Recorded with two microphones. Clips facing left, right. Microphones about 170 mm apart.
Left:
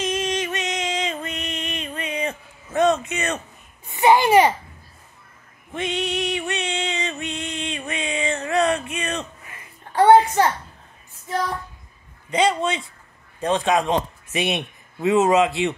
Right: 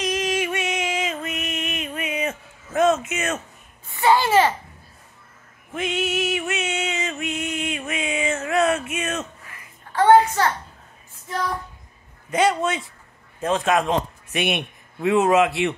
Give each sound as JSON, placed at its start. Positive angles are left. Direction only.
{"t": 0.0, "sound": "music", "side_deg": 0}
{"t": 3.1, "sound": "speech", "side_deg": -5}
{"t": 3.8, "sound": "a child's voice", "side_deg": 15}
{"t": 5.7, "sound": "music", "side_deg": 0}
{"t": 9.5, "sound": "a sound", "side_deg": 15}
{"t": 12.3, "sound": "a man's voice", "side_deg": -5}